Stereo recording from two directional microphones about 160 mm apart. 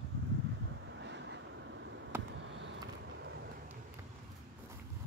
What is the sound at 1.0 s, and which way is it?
Vehicle, 90° right.